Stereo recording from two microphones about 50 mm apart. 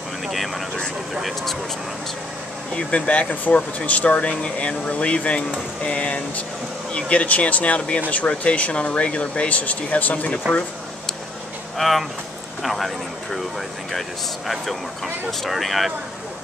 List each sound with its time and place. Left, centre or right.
0.3 s speech: centre
2.7 s speech: left
11.8 s speech: centre
15.4 s speech: centre